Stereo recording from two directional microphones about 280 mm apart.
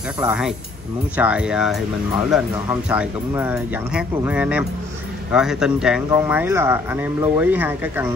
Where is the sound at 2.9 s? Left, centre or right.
Centre.